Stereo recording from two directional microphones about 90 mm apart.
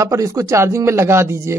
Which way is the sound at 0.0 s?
35° right (ahead or behind).